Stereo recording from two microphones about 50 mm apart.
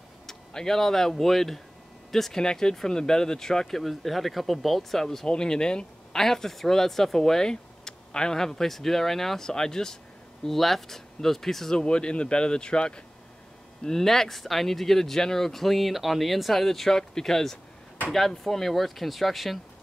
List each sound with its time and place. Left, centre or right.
0.3 s speech: centre
11.8 s speech: centre
13.8 s speech: centre